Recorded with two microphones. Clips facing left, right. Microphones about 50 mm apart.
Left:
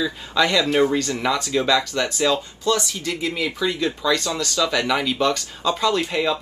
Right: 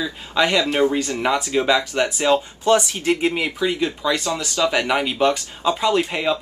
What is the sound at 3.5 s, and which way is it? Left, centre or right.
Speech, centre.